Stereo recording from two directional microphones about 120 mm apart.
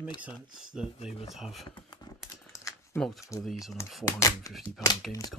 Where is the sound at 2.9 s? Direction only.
Centre (ahead or behind).